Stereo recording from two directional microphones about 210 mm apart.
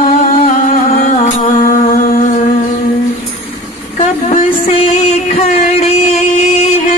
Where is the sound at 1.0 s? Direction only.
35° left (ahead or behind).